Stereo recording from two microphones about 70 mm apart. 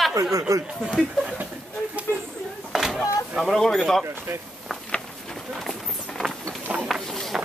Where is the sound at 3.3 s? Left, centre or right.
Centre.